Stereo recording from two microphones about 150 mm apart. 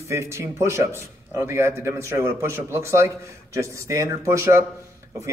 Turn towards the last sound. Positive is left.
turn(degrees=-20)  # may be behind; listen again after turning